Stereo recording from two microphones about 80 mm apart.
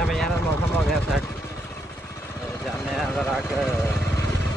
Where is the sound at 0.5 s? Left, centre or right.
Left.